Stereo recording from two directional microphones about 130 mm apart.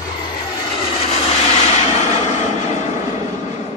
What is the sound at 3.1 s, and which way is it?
Vehicle, 65° left (ahead or behind).